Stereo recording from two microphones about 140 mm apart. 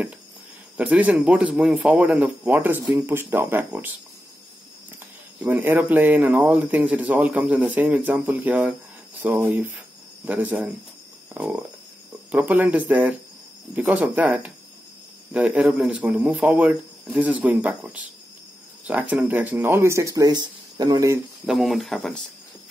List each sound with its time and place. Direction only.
0.7 s speech: 10° right (ahead or behind)
5.4 s speech: 15° right (ahead or behind)
21.5 s speech: centre (ahead or behind)